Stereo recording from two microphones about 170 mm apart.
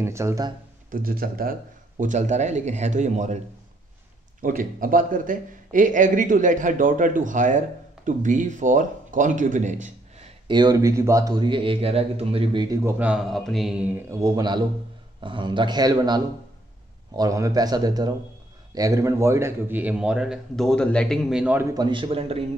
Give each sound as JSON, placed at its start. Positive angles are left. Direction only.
{"t": 0.0, "sound": "a man's voice", "side_deg": -15}
{"t": 0.8, "sound": "a man's voice", "side_deg": -60}
{"t": 4.4, "sound": "a man's voice", "side_deg": -55}
{"t": 10.5, "sound": "a man's voice", "side_deg": -25}
{"t": 12.8, "sound": "a man's voice", "side_deg": -10}
{"t": 21.7, "sound": "a man's voice", "side_deg": -30}